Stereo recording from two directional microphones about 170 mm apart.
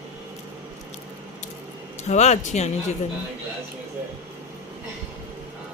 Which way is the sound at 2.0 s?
40° left (ahead or behind).